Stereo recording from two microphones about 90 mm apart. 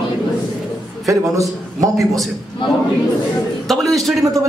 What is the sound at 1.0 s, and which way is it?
A man's voice, 35° right (ahead or behind).